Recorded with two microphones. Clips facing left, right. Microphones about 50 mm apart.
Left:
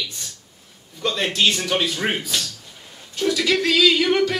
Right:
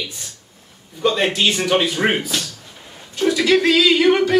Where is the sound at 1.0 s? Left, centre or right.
Right.